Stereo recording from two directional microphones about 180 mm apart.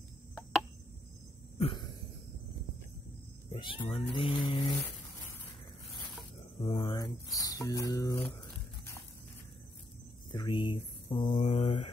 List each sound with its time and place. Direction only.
1.6 s a sound: 30° left (ahead or behind)
3.5 s speech: 30° left (ahead or behind)
6.6 s speech: 30° left (ahead or behind)
10.3 s speech: 25° left (ahead or behind)